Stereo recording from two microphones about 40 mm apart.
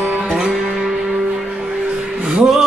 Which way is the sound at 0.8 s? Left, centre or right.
Centre.